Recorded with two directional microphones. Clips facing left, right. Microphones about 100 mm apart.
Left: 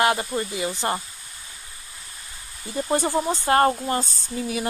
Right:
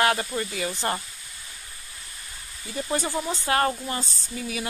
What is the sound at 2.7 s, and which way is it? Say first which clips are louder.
Speech: left 5 dB; 30° left (ahead or behind).